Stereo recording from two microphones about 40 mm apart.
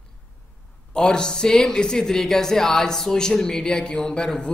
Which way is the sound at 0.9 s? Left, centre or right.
Centre.